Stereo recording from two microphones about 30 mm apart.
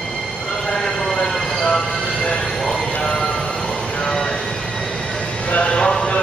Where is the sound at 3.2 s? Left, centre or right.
Left.